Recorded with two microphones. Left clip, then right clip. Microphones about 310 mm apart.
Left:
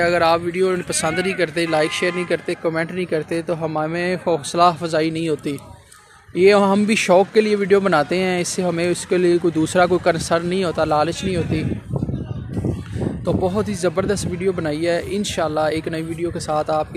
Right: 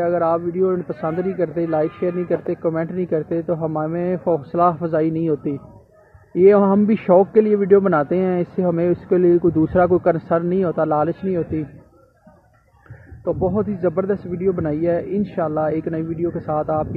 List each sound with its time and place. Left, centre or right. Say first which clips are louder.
0.0 s speech: left 2 dB; left
13.2 s speech: right 1 dB; centre